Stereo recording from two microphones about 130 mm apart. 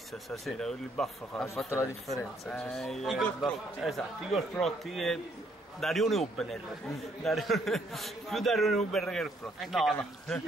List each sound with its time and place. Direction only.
0.3 s a man's voice: 5° left (ahead or behind)